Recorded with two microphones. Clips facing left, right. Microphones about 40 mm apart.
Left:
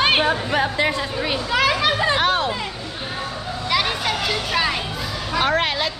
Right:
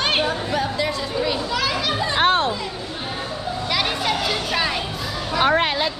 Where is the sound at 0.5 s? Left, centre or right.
Left.